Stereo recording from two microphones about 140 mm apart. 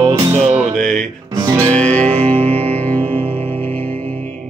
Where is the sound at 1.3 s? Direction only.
25° right (ahead or behind).